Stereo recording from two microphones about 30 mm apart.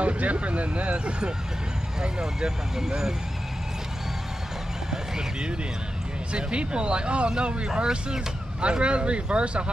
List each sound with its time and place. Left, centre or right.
0.0 s speech: right
0.9 s speech: right
2.0 s speech: centre
6.3 s speech: right